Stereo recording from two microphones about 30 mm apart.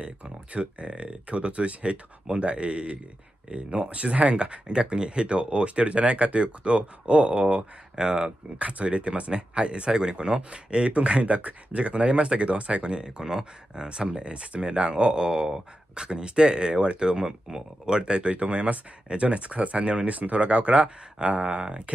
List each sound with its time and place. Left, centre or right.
0.0 s speech: right
8.0 s speech: right
8.5 s speech: right
13.2 s speech: right
15.2 s a sound: centre
15.9 s speech: right
21.2 s speech: right